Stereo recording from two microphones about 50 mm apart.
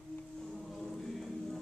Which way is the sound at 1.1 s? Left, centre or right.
Centre.